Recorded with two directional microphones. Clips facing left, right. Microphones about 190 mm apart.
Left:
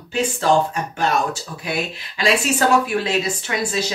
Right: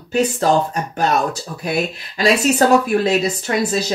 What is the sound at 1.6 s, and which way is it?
Speech, 40° right (ahead or behind).